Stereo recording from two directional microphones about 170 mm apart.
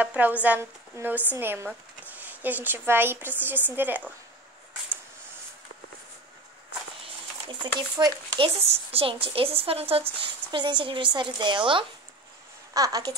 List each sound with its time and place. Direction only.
0.0 s speech: 10° right (ahead or behind)
7.4 s a woman's voice: 25° right (ahead or behind)